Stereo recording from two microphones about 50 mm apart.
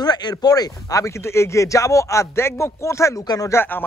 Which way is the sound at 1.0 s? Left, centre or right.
Left.